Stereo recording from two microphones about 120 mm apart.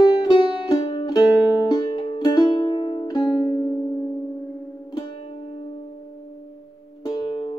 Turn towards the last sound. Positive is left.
turn(degrees=40)  # may be behind; listen again after turning